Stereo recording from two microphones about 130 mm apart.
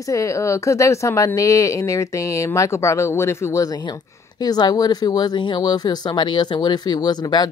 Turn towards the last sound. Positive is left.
turn(degrees=35)  # may be behind; listen again after turning